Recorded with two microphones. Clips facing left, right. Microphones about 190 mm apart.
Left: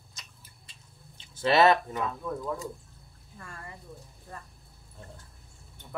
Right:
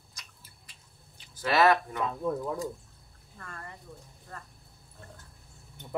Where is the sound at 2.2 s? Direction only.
20° right (ahead or behind).